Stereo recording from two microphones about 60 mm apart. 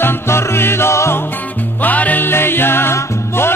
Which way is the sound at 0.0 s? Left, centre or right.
Left.